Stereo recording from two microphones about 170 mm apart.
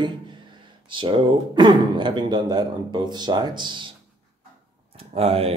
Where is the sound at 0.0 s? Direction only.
30° right (ahead or behind).